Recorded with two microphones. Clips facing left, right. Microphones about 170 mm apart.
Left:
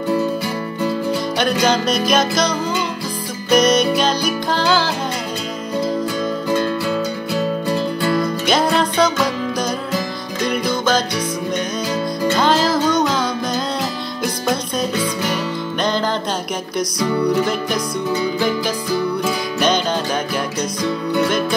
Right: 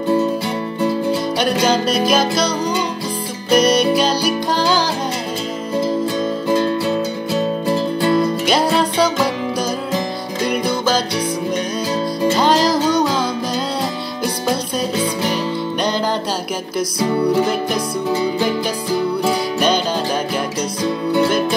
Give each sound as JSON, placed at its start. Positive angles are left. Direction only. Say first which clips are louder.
{"t": 2.0, "sound": "music", "louder": "left 1 dB", "side_deg": -10}
{"t": 3.4, "sound": "music", "louder": "even", "side_deg": -30}
{"t": 4.6, "sound": "music", "louder": "left 1 dB", "side_deg": -15}
{"t": 6.5, "sound": "music", "louder": "right 3 dB", "side_deg": -25}
{"t": 8.5, "sound": "music", "louder": "right 1 dB", "side_deg": -10}
{"t": 12.2, "sound": "music", "louder": "right 2 dB", "side_deg": -15}
{"t": 12.8, "sound": "music", "louder": "right 1 dB", "side_deg": -30}
{"t": 17.0, "sound": "music", "louder": "right 1 dB", "side_deg": -30}
{"t": 20.8, "sound": "music", "louder": "right 2 dB", "side_deg": -30}